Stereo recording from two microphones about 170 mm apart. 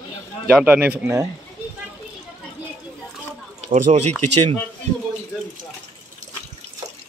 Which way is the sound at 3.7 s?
40° right (ahead or behind).